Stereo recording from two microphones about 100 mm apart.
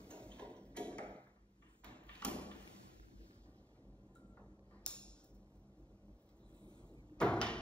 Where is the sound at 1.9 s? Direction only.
10° left (ahead or behind).